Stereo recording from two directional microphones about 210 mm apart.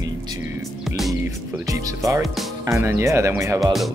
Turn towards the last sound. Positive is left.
turn(degrees=-15)  # may be behind; listen again after turning